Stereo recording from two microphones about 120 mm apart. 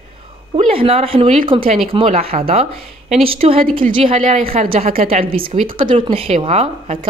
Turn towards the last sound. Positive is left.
turn(degrees=-55)  # may be behind; listen again after turning